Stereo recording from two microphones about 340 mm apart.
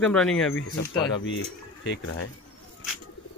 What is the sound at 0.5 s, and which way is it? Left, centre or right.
Speech, left.